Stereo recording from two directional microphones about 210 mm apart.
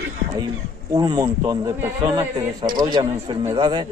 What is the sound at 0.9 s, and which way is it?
A man's voice, 15° right (ahead or behind).